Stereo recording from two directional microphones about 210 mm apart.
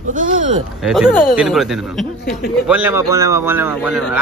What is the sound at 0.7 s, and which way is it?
A man's voice, centre (ahead or behind).